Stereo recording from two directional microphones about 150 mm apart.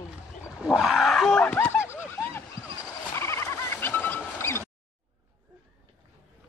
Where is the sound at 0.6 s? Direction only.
5° right (ahead or behind); by 4.6 s 15° left (ahead or behind).